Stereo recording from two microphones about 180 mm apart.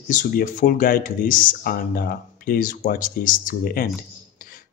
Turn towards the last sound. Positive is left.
turn(degrees=55)  # may be behind; listen again after turning